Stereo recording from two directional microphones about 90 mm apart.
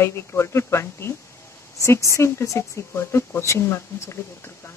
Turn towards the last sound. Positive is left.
turn(degrees=30)  # may be behind; listen again after turning